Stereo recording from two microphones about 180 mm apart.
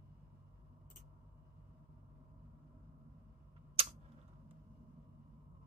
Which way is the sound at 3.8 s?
35° right (ahead or behind).